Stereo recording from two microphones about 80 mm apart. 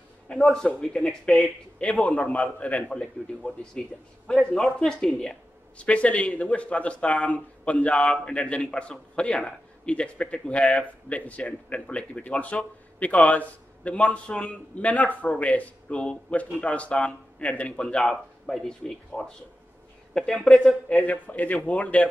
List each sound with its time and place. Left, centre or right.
0.3 s a man's voice: centre
1.8 s a man's voice: centre
5.8 s a man's voice: centre
21.0 s a man's voice: centre